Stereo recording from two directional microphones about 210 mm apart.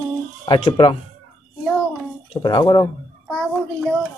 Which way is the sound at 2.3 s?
20° left (ahead or behind).